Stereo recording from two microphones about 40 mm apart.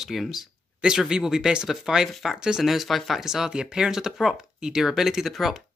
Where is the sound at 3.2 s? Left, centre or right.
Centre.